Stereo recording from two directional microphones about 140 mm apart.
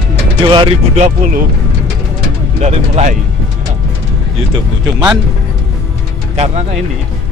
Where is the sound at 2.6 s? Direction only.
55° right (ahead or behind).